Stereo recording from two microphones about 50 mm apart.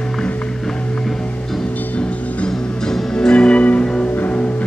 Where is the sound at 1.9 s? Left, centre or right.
Left.